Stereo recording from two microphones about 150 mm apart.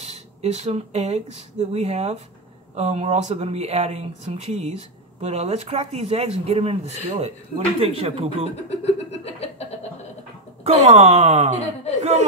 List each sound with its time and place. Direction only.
0.0 s speech: 45° right (ahead or behind)
8.6 s a sound: 45° left (ahead or behind)
10.6 s speech: 45° right (ahead or behind)